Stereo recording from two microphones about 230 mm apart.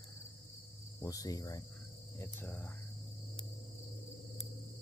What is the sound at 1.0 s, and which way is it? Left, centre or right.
Speech, centre.